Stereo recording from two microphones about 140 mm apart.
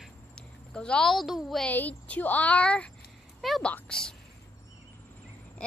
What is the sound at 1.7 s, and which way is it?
A child's voice, 10° left (ahead or behind).